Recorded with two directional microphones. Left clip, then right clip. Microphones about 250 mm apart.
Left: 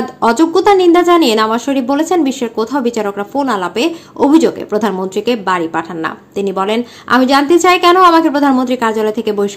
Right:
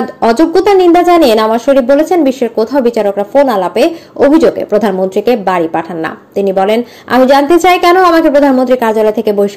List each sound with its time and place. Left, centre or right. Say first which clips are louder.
0.2 s a woman's voice: right 2 dB; centre